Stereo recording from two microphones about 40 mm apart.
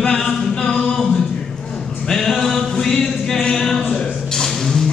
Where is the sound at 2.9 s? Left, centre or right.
Centre.